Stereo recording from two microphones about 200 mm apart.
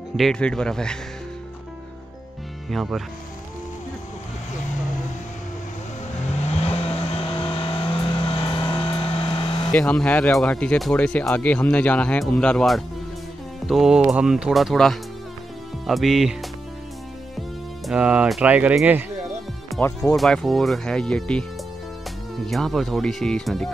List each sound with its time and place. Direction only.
0.1 s speech: centre (ahead or behind)
2.7 s speech: centre (ahead or behind)
6.3 s vehicle: 30° left (ahead or behind)
9.7 s speech: 5° left (ahead or behind)
17.8 s speech: 5° right (ahead or behind)
19.8 s speech: 15° left (ahead or behind)
20.2 s speech: centre (ahead or behind)
22.5 s speech: centre (ahead or behind)